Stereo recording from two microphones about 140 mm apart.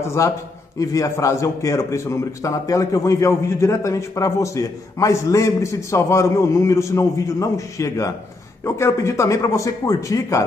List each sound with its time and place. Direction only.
0.0 s a man's voice: 20° left (ahead or behind)